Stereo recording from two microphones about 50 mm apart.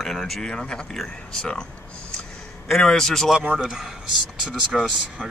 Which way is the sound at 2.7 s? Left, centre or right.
Centre.